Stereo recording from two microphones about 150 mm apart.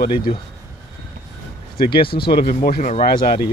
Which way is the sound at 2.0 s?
90° left.